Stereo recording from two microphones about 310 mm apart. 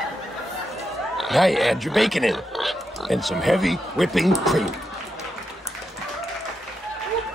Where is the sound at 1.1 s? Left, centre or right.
Centre.